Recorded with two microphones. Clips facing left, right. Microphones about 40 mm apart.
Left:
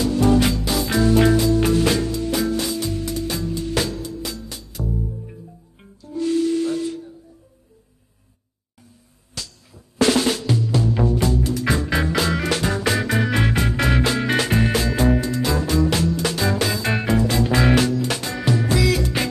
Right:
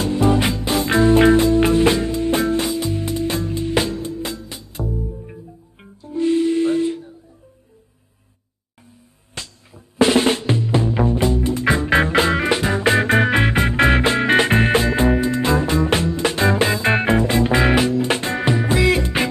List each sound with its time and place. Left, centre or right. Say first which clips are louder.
0.2 s music: even; right
2.7 s music: right 3 dB; right
9.3 s drum: right 2 dB; right
12.8 s music: right 5 dB; right